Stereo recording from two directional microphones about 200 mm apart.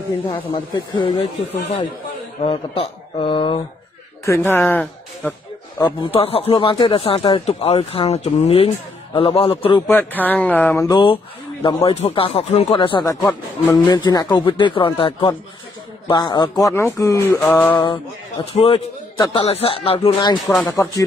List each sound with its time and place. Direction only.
0.3 s speech: 25° left (ahead or behind)
2.4 s speech: 25° left (ahead or behind)
4.3 s a man's voice: 10° left (ahead or behind)
5.8 s speech: 25° left (ahead or behind)
9.8 s a man's voice: 10° left (ahead or behind)
11.6 s a man's voice: 25° left (ahead or behind)
17.4 s music: 5° left (ahead or behind)
18.4 s speech: 30° left (ahead or behind)
19.1 s a man's voice: 20° left (ahead or behind)